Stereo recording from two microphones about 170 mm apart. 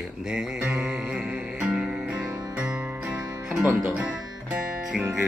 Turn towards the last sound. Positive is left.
turn(degrees=-5)  # may be behind; listen again after turning